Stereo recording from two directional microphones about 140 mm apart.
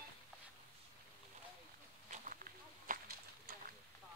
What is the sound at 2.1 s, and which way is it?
Walk, 70° right (ahead or behind).